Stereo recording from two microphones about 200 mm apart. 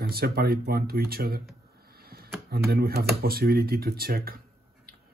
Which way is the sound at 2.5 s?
50° right (ahead or behind).